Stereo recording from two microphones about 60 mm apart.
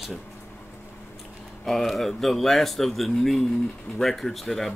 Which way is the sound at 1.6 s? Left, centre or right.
Centre.